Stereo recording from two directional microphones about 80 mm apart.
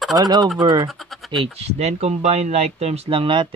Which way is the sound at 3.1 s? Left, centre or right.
Right.